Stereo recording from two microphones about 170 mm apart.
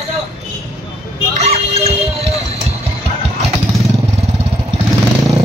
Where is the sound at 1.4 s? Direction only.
40° right (ahead or behind).